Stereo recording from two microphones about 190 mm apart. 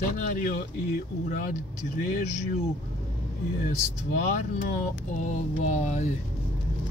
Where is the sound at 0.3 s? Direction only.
45° left (ahead or behind).